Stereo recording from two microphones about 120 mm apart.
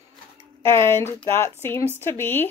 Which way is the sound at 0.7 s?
20° left (ahead or behind).